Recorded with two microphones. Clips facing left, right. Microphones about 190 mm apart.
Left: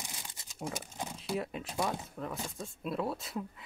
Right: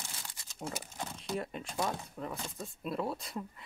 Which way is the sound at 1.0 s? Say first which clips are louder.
Left 2 dB; 10° left (ahead or behind).